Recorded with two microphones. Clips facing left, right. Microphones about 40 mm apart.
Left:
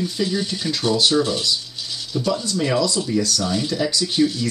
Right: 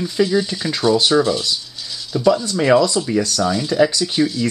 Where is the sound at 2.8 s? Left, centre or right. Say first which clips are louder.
Right 3 dB; right.